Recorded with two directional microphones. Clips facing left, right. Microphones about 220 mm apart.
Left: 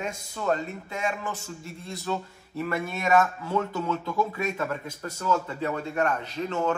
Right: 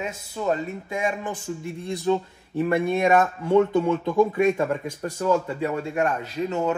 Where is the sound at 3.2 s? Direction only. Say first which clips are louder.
Right 6 dB; 25° right (ahead or behind).